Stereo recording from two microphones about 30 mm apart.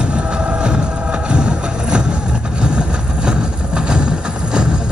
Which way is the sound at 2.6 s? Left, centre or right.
Right.